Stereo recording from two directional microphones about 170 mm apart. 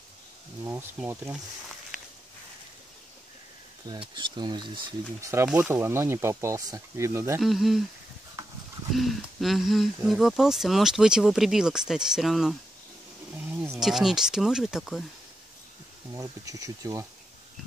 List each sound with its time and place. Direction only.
1.0 s speech: 5° right (ahead or behind)
4.1 s speech: 25° right (ahead or behind)
7.3 s speech: centre (ahead or behind)
8.9 s speech: centre (ahead or behind)
13.5 s wild animals: 15° right (ahead or behind)
13.7 s speech: centre (ahead or behind)
16.1 s speech: 20° right (ahead or behind)